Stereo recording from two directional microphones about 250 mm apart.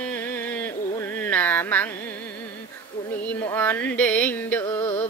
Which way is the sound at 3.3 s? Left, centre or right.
Centre.